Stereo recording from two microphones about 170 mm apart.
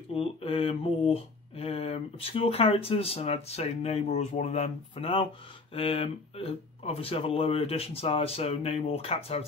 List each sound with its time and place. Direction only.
0.1 s speech: 35° left (ahead or behind)